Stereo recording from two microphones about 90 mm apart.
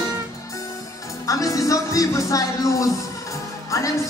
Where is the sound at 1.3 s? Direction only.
40° left (ahead or behind).